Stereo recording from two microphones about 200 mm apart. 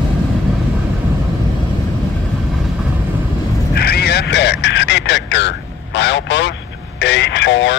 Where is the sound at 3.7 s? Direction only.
55° left (ahead or behind).